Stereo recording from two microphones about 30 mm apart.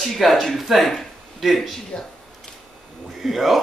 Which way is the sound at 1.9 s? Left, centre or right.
Left.